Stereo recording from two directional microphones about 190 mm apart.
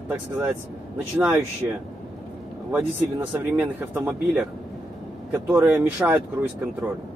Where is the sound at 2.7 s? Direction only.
10° right (ahead or behind).